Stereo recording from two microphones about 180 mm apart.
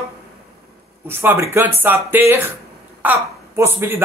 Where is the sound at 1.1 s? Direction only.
15° right (ahead or behind).